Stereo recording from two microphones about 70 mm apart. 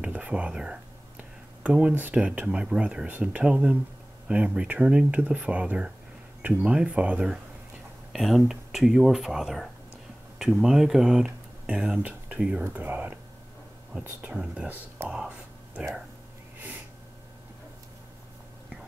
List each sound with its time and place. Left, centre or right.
0.0 s speech: centre
8.1 s speech: centre; by 13.1 s right
14.2 s speech: centre